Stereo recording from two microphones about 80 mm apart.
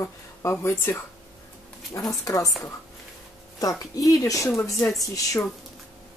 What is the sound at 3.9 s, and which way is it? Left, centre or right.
Speech, left.